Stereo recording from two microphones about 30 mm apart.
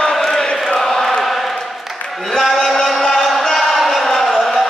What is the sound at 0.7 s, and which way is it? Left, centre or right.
Chant, centre.